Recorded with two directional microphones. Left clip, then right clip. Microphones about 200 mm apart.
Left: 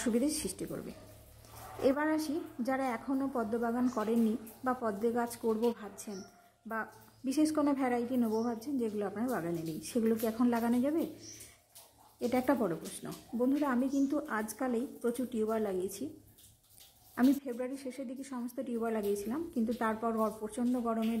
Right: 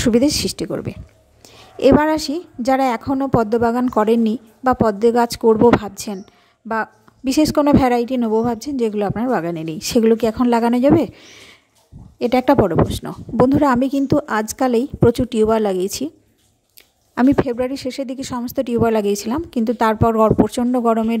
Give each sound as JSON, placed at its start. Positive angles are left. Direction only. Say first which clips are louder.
{"t": 0.0, "sound": "a woman's voice", "louder": "right 17 dB", "side_deg": -40}
{"t": 12.2, "sound": "speech", "louder": "right 17 dB", "side_deg": -45}
{"t": 17.1, "sound": "speech", "louder": "right 15 dB", "side_deg": -45}